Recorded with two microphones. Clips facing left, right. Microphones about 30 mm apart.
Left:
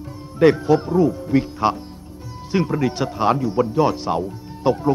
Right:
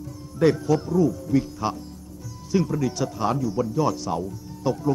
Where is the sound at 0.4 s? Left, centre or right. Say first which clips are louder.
Left 5 dB; left.